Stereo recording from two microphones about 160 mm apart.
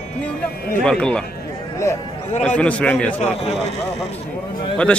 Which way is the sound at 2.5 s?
10° left (ahead or behind).